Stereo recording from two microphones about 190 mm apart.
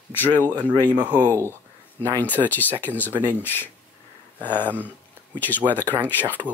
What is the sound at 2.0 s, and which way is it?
Speech, 10° left (ahead or behind).